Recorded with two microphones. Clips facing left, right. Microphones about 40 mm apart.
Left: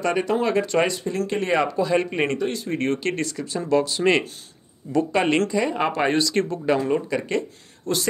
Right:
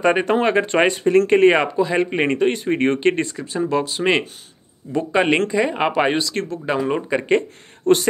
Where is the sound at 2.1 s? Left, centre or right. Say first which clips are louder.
Right 5 dB; right.